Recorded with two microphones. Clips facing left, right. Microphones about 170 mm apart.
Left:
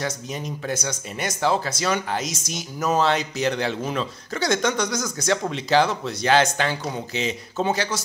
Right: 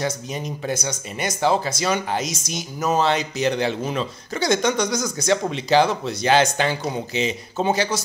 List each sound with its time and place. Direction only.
0.0 s speech: 15° right (ahead or behind)